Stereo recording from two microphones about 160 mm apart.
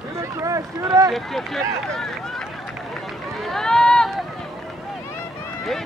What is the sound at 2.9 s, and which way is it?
Run, centre (ahead or behind).